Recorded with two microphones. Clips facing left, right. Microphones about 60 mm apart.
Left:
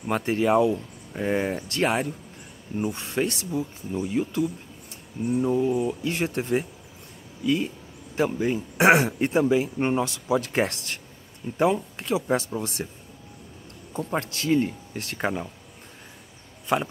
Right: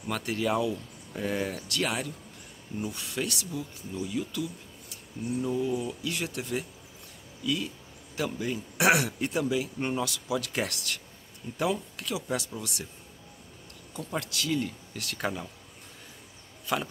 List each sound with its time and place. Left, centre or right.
0.1 s a man's voice: left
13.9 s a man's voice: left
16.6 s speech: left